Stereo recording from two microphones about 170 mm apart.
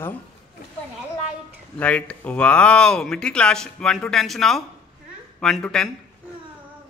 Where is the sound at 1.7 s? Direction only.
10° left (ahead or behind).